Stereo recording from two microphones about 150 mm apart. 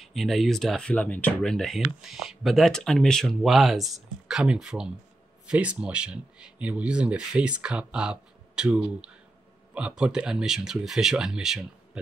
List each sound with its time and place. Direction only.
0.0 s speech: centre (ahead or behind)